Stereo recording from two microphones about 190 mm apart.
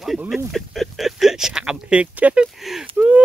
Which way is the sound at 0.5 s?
Centre (ahead or behind).